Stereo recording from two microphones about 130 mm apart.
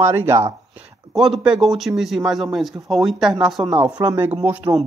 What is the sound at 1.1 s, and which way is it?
Speech, centre (ahead or behind).